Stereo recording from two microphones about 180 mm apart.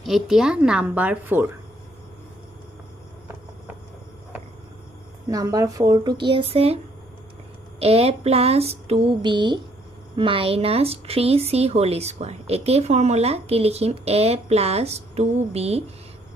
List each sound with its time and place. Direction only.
0.0 s a woman's voice: centre (ahead or behind)
5.3 s a woman's voice: 20° right (ahead or behind)
7.8 s speech: 35° right (ahead or behind)